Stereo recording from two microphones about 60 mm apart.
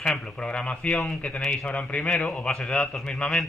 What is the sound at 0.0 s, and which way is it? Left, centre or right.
A man's voice, centre.